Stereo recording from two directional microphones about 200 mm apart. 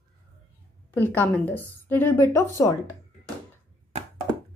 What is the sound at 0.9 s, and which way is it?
A woman's voice, 10° left (ahead or behind).